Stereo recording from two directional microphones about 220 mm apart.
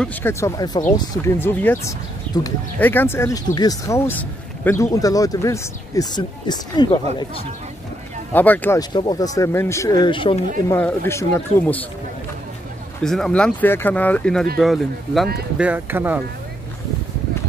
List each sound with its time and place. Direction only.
0.0 s speech: 10° left (ahead or behind)
8.3 s speech: 10° left (ahead or behind)
10.7 s speech: 10° left (ahead or behind)
13.0 s speech: centre (ahead or behind)